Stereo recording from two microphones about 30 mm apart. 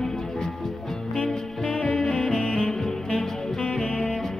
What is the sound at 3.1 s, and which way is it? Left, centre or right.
Music, centre.